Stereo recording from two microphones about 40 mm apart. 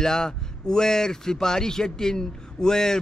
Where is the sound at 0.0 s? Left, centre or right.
Centre.